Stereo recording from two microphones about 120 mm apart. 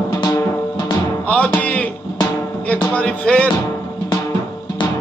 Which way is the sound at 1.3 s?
10° left (ahead or behind).